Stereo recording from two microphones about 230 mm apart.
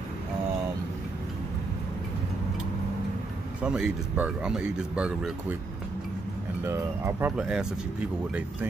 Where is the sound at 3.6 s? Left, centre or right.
Centre.